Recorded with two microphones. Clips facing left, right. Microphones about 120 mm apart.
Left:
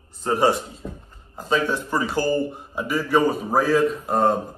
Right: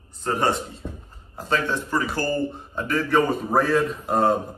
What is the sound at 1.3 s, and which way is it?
Speech, centre (ahead or behind).